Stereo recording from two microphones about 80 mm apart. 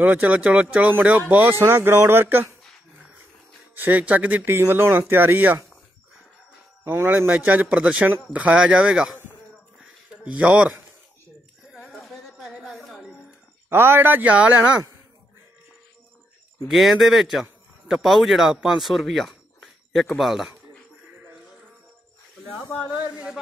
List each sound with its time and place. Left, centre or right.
0.0 s speech: centre
3.7 s speech: right
4.5 s speech: right
6.8 s speech: right
7.6 s speech: centre
10.2 s speech: centre
11.9 s a sound: centre
12.6 s music: centre
13.7 s speech: right
16.6 s a man's voice: centre